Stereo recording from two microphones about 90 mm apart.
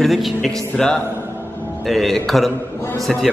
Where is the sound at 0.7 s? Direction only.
10° left (ahead or behind).